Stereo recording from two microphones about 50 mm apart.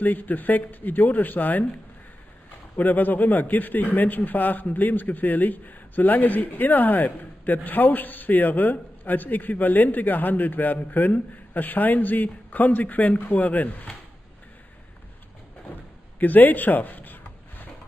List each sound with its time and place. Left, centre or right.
0.0 s speech: left
2.7 s speech: left
16.2 s a sound: left